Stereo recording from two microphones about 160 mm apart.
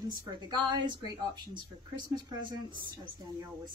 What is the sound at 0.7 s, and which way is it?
Speech, 25° right (ahead or behind).